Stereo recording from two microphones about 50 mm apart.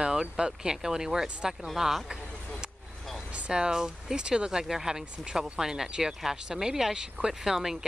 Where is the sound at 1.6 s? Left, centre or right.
Centre.